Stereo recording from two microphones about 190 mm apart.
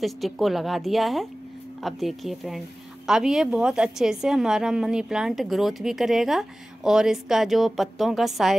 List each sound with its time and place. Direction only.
0.0 s a woman's voice: centre (ahead or behind)